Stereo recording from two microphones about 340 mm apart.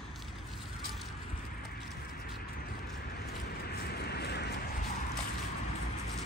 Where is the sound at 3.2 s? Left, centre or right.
Left.